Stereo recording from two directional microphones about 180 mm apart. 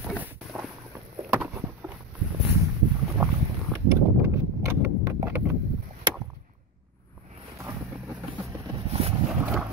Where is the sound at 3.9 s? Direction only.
15° right (ahead or behind).